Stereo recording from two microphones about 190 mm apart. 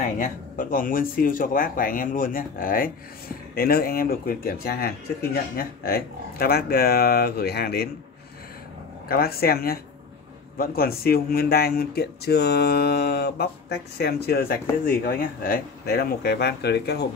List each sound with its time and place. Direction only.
0.0 s speech: 45° left (ahead or behind)
9.1 s speech: 55° left (ahead or behind)